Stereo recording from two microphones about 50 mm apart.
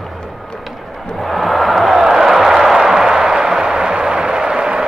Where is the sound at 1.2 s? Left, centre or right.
Centre.